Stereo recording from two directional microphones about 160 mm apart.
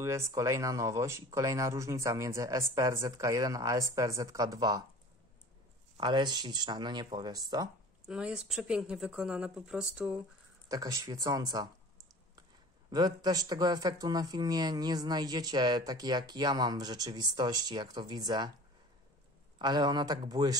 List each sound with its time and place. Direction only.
0.0 s speech: 20° right (ahead or behind)
5.9 s speech: 30° right (ahead or behind)
8.0 s speech: 5° right (ahead or behind)
10.7 s speech: 25° right (ahead or behind)
12.9 s speech: 25° right (ahead or behind)
19.6 s speech: 25° right (ahead or behind)